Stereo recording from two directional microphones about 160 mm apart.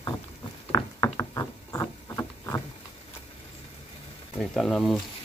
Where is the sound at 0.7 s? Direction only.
25° left (ahead or behind).